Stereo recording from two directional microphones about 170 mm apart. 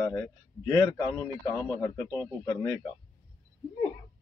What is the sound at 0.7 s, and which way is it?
A man's voice, 20° left (ahead or behind).